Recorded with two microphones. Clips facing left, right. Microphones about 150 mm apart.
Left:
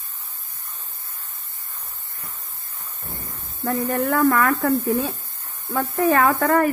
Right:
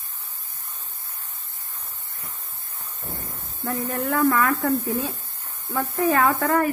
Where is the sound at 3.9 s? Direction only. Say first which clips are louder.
Left 2 dB; 55° left (ahead or behind).